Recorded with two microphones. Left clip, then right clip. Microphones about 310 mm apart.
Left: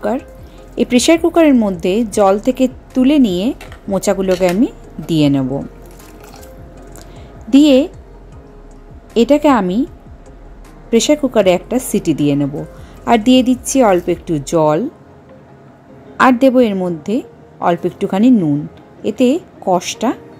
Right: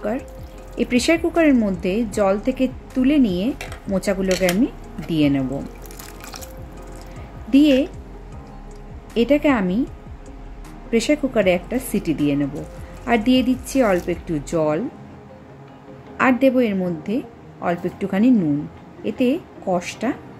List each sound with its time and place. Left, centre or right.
0.7 s a woman's voice: centre
7.5 s a woman's voice: left
9.1 s a woman's voice: centre
10.9 s a woman's voice: centre
16.2 s a woman's voice: centre